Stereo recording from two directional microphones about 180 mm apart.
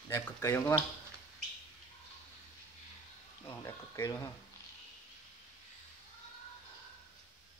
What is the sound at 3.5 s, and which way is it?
Speech, 15° left (ahead or behind).